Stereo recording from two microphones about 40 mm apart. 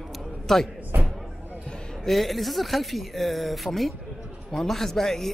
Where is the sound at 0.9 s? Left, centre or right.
Right.